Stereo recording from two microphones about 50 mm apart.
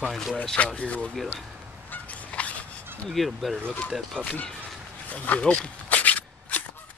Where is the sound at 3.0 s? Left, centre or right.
Centre.